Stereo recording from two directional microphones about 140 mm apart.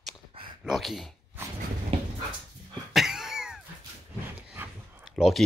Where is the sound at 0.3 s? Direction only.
40° right (ahead or behind).